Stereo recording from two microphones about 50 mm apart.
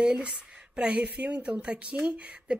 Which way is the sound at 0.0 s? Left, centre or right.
Centre.